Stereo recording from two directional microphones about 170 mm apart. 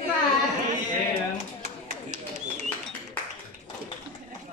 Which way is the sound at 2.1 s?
45° right (ahead or behind).